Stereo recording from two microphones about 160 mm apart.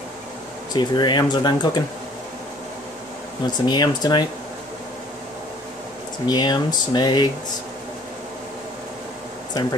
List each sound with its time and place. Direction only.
0.7 s speech: 30° left (ahead or behind)
3.4 s speech: 25° left (ahead or behind)
6.2 s speech: 25° left (ahead or behind)
9.5 s speech: 25° left (ahead or behind)